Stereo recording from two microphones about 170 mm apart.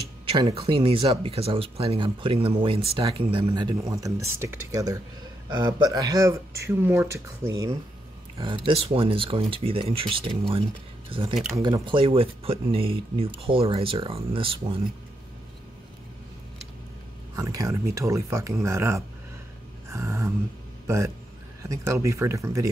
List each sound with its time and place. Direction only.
0.3 s speech: 30° right (ahead or behind)
3.4 s speech: 20° right (ahead or behind)
8.6 s speech: 35° right (ahead or behind)
17.4 s speech: 20° right (ahead or behind)